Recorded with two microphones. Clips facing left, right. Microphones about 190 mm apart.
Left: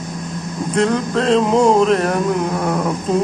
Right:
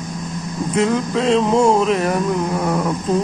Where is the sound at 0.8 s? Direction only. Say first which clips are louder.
Left 1 dB; centre (ahead or behind).